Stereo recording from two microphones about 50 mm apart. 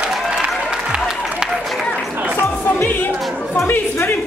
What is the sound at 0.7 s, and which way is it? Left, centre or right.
Applause, centre.